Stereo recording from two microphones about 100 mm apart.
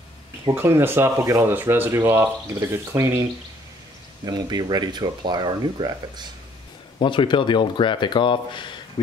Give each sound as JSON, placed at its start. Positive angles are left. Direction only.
{"t": 0.6, "sound": "speech", "side_deg": -25}
{"t": 4.3, "sound": "speech", "side_deg": -45}
{"t": 7.0, "sound": "speech", "side_deg": 55}